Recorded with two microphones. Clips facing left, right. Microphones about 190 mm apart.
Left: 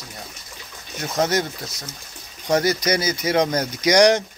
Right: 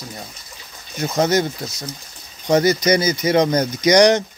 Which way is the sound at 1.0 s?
Centre (ahead or behind).